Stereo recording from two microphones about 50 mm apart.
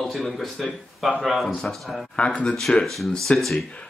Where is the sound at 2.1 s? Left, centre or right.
Left.